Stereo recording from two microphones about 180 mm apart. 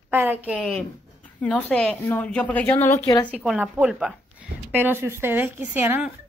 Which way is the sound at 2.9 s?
20° left (ahead or behind).